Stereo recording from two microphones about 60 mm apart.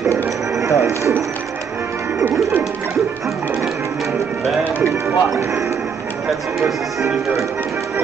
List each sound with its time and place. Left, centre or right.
0.1 s music: right